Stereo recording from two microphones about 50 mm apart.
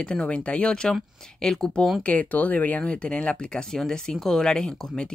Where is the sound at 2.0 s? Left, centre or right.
Left.